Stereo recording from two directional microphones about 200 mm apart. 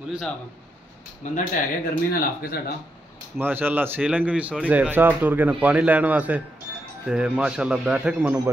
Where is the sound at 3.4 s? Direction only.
10° right (ahead or behind).